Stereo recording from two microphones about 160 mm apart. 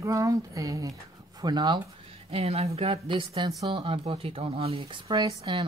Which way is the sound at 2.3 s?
40° right (ahead or behind).